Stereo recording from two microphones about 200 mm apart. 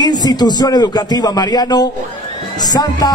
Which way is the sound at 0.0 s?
20° left (ahead or behind).